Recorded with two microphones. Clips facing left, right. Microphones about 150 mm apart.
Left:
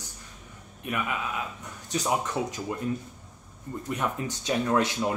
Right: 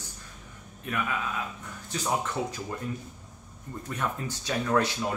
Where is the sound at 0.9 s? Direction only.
15° left (ahead or behind).